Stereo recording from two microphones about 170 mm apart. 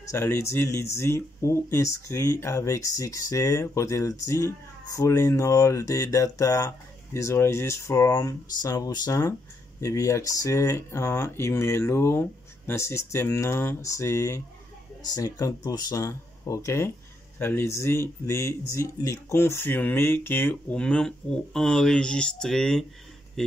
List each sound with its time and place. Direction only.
0.1 s speech: 15° left (ahead or behind)